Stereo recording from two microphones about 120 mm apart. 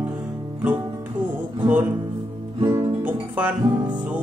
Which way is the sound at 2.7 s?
15° right (ahead or behind).